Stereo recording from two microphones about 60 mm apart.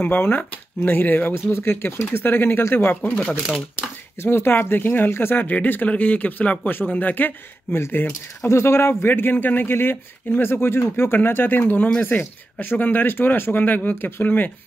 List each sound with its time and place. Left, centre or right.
0.0 s speech: left
1.3 s speech: left
3.0 s speech: left
3.3 s speech: centre
3.7 s speech: left
8.5 s speech: left